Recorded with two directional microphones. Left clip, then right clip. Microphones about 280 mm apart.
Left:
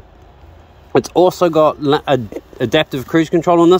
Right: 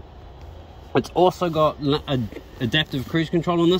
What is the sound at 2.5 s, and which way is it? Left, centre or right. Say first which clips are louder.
Speech: left 8 dB; centre.